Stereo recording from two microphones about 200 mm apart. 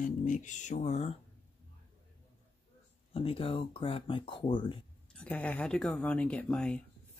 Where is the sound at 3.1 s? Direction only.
30° left (ahead or behind).